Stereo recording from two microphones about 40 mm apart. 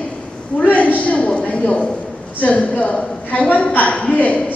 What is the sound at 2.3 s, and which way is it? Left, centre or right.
A woman's voice, left.